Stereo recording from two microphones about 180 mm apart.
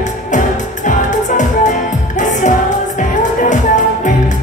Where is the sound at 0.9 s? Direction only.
45° left (ahead or behind).